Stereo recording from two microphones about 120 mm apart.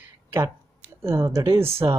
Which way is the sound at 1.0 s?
20° right (ahead or behind).